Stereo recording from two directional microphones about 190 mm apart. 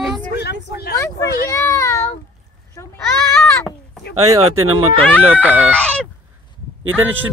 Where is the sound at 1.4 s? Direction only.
15° left (ahead or behind).